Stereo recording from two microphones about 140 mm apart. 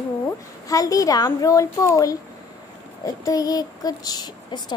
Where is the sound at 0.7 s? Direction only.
25° left (ahead or behind).